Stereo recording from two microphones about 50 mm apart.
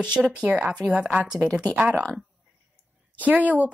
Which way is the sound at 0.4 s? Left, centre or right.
Right.